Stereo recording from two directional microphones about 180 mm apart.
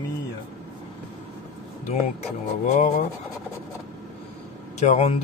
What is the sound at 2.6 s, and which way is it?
Speech, 40° left (ahead or behind).